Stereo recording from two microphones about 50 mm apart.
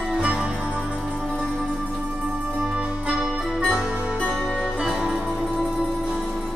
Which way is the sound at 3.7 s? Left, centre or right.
Right.